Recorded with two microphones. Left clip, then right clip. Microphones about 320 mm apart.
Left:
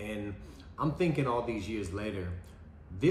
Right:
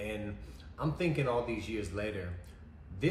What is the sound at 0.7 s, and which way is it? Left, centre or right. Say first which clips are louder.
Speech: left 3 dB; centre.